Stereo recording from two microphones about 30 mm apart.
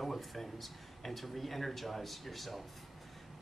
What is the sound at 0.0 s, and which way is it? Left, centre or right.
Speech, centre.